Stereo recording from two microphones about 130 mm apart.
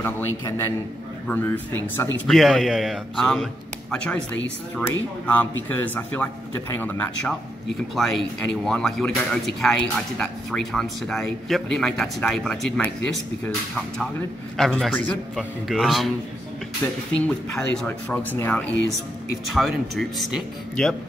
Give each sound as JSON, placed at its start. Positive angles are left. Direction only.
{"t": 0.0, "sound": "a man's voice", "side_deg": 20}
{"t": 2.2, "sound": "speech", "side_deg": 0}
{"t": 7.9, "sound": "speech", "side_deg": 0}
{"t": 14.6, "sound": "speech", "side_deg": 5}
{"t": 17.1, "sound": "speech", "side_deg": 5}
{"t": 19.5, "sound": "speech", "side_deg": 0}